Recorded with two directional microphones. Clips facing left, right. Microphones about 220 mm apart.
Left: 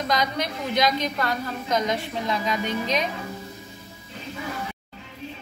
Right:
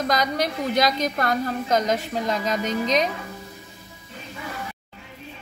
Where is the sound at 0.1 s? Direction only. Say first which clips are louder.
Even; 45° right (ahead or behind).